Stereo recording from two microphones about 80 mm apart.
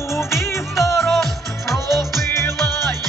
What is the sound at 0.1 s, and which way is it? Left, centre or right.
Music, left.